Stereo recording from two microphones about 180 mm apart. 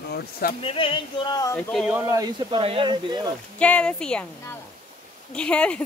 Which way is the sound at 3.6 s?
5° left (ahead or behind).